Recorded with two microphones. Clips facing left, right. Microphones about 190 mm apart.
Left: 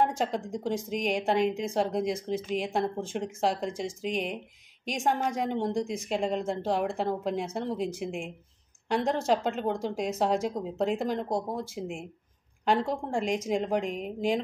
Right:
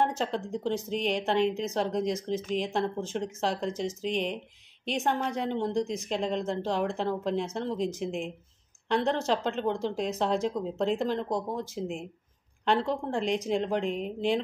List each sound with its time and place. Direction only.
0.0 s speech: 10° left (ahead or behind)